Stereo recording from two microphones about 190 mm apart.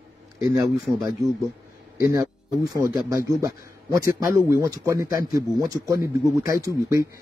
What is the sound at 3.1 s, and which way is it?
A man's voice, 15° right (ahead or behind).